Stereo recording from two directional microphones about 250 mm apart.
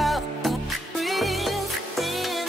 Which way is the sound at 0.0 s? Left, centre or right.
Centre.